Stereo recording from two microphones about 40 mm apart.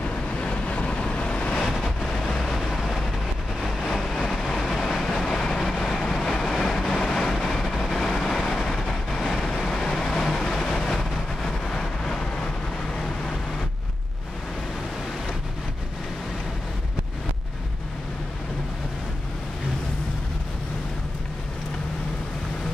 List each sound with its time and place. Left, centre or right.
0.0 s vehicle: left
1.6 s vehicle: centre
2.6 s vehicle: centre